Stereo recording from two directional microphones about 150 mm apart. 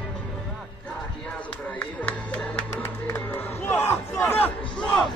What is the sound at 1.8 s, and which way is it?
Music, 10° left (ahead or behind).